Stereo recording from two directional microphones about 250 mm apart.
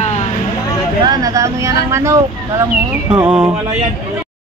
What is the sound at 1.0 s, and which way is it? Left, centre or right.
Speech, centre.